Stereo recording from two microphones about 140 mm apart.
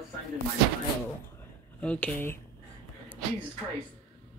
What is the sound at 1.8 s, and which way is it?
Speech, 10° left (ahead or behind).